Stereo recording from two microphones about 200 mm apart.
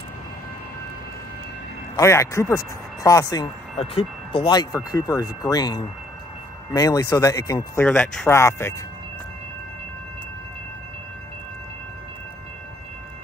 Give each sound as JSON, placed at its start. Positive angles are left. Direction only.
{"t": 2.0, "sound": "speech", "side_deg": 15}
{"t": 3.7, "sound": "speech", "side_deg": 30}